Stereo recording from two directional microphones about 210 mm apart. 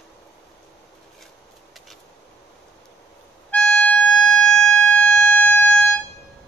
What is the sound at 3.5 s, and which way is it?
Music, 5° left (ahead or behind).